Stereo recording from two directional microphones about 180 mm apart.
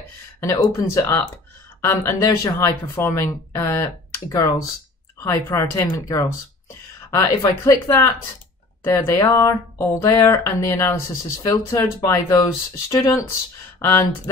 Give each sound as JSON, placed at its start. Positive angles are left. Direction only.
{"t": 0.4, "sound": "speech", "side_deg": 20}